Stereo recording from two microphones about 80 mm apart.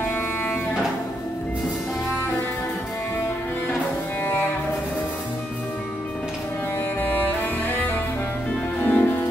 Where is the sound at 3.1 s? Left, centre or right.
Left.